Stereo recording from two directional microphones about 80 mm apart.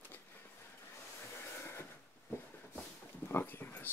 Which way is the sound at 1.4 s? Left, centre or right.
Left.